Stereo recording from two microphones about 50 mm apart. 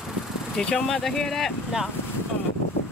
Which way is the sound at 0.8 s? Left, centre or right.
Centre.